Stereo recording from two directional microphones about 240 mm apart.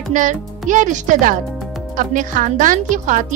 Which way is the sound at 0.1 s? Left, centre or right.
Right.